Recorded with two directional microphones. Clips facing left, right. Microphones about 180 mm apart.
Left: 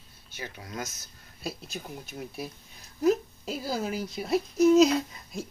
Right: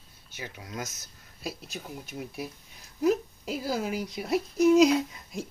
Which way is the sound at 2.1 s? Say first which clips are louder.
Right 1 dB; 10° right (ahead or behind).